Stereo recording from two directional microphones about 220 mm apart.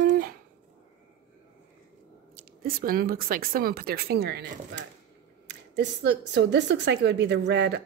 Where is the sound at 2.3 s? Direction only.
40° right (ahead or behind).